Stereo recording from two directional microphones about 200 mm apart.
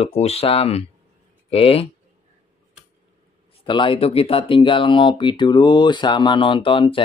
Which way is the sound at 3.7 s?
25° left (ahead or behind).